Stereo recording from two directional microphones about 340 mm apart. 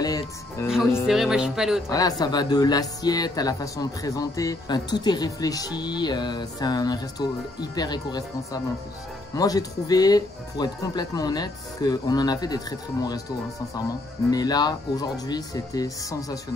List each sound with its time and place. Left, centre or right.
0.0 s music: centre
0.7 s speech: centre
1.9 s speech: centre
14.3 s speech: centre